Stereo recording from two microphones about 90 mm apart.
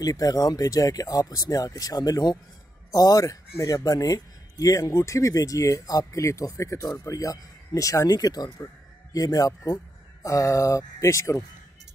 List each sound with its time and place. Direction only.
0.0 s speech: 45° left (ahead or behind)